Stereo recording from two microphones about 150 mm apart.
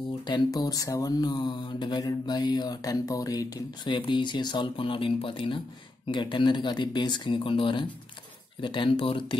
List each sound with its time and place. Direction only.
0.3 s speech: 25° left (ahead or behind)